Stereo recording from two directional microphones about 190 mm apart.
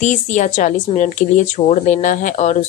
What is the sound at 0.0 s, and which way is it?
Speech, 40° left (ahead or behind).